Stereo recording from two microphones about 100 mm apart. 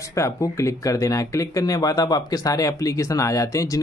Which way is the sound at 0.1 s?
30° left (ahead or behind).